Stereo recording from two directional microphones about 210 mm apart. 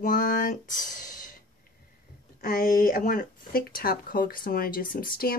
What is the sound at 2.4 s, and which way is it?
Speech, 40° left (ahead or behind).